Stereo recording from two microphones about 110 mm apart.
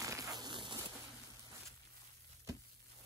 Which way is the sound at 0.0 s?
30° right (ahead or behind).